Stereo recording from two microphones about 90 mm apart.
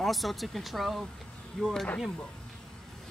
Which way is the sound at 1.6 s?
10° left (ahead or behind).